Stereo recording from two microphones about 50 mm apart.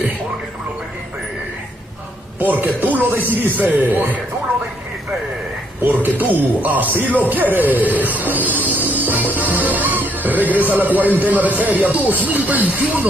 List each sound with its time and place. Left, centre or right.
2.4 s a man's voice: right
5.9 s a man's voice: right
8.5 s music: right
12.3 s a man's voice: right